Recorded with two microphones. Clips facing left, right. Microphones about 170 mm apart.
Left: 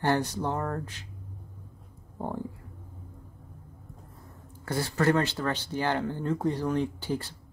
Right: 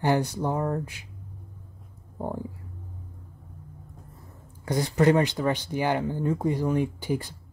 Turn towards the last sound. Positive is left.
turn(degrees=-10)  # may be behind; listen again after turning